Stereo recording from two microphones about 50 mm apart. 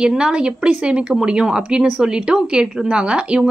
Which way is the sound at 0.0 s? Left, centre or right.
Centre.